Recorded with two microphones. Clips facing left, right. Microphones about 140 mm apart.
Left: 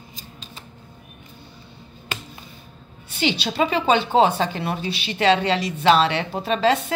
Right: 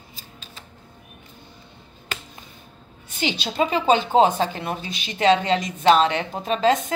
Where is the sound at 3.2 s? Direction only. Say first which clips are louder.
Left 2 dB; 45° right (ahead or behind).